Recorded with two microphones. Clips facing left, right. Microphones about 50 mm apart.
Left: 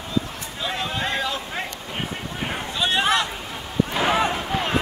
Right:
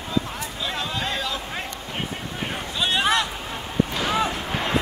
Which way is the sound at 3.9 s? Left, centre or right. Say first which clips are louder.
Left 6 dB; left.